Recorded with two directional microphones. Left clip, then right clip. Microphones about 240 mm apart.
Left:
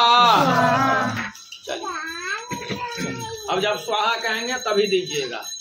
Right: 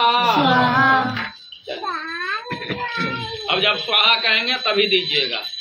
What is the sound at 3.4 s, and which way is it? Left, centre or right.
Male singing, left.